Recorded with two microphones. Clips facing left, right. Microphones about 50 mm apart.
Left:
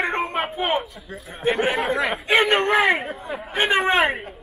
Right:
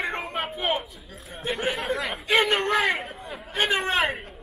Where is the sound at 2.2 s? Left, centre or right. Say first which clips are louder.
Left 3 dB; left.